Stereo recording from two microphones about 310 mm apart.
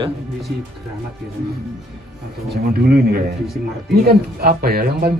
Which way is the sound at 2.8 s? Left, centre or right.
Right.